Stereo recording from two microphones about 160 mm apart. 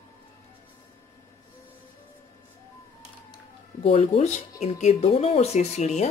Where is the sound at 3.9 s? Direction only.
35° left (ahead or behind).